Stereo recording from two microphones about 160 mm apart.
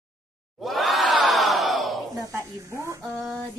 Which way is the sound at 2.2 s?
15° right (ahead or behind).